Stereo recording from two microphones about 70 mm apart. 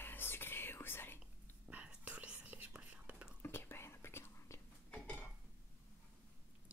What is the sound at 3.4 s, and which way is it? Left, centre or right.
Whispering, left.